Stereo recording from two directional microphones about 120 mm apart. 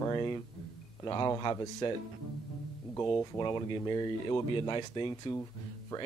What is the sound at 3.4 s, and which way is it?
Speech, 40° left (ahead or behind).